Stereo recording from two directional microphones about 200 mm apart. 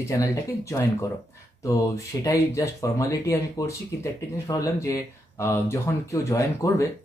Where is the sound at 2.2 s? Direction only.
15° left (ahead or behind).